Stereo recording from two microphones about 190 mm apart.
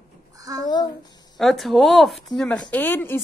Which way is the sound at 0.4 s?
20° right (ahead or behind).